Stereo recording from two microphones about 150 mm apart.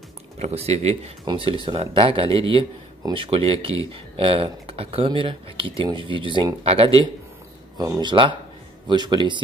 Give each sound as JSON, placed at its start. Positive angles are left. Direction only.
{"t": 0.4, "sound": "speech", "side_deg": -45}
{"t": 1.2, "sound": "speech", "side_deg": -35}
{"t": 7.7, "sound": "speech", "side_deg": -30}